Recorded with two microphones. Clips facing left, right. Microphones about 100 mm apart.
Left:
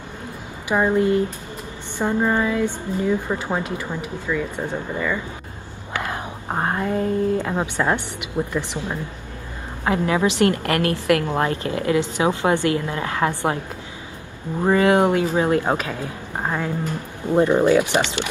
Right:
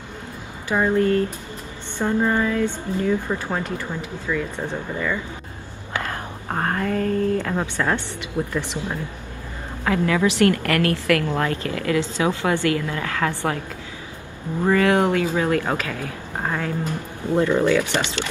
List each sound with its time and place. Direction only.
0.7 s speech: 15° left (ahead or behind)
9.8 s a woman's voice: 25° left (ahead or behind)
14.6 s a woman's voice: 20° left (ahead or behind)